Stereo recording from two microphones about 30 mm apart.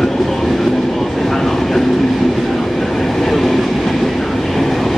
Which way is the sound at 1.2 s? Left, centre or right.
Centre.